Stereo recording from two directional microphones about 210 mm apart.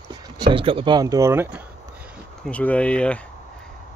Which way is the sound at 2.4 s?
5° left (ahead or behind).